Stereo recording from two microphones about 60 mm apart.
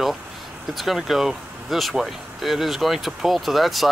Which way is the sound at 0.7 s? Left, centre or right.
Centre.